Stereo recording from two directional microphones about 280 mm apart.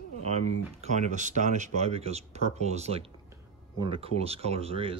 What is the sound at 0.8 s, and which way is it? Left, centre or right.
Speech, right.